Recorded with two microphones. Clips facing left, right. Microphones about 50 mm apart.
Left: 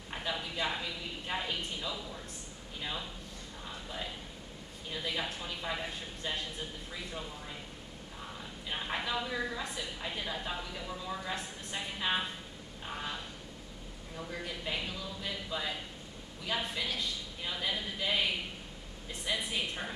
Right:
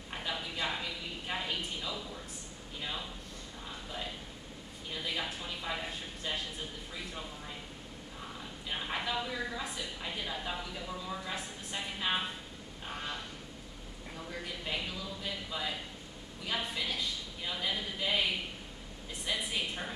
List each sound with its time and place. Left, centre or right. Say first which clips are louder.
0.1 s a sound: left 1 dB; centre
2.8 s a woman's voice: left 1 dB; centre
4.9 s a woman's voice: left 1 dB; centre
8.6 s a woman's voice: even; centre
14.1 s a woman's voice: left 2 dB; centre
19.2 s a woman's voice: left 1 dB; centre